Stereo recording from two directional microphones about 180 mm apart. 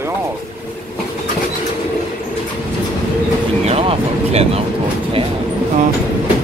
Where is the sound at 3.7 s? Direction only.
35° right (ahead or behind).